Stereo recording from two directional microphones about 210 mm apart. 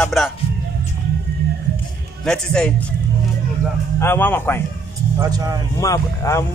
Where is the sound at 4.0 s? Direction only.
10° left (ahead or behind).